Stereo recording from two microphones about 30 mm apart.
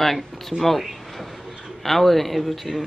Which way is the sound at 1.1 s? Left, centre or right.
Centre.